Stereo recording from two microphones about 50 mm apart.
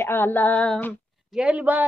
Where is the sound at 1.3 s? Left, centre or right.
Centre.